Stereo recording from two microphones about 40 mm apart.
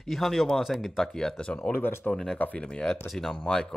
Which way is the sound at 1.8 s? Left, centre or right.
Left.